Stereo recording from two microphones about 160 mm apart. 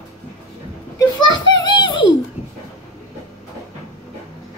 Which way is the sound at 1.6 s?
30° left (ahead or behind).